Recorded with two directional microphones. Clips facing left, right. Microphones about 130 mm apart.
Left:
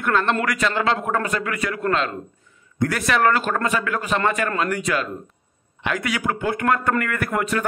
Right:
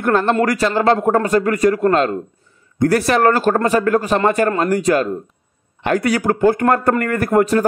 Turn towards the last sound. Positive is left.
turn(degrees=-35)  # may be behind; listen again after turning